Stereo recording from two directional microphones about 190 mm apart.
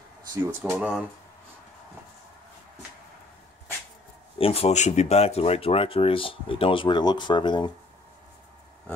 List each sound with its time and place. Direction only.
0.3 s speech: 15° right (ahead or behind)
0.7 s speech: centre (ahead or behind)
4.4 s speech: 30° left (ahead or behind)